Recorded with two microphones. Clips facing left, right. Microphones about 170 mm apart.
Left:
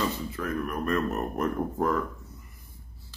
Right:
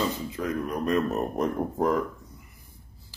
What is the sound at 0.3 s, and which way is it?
Speech, 20° right (ahead or behind).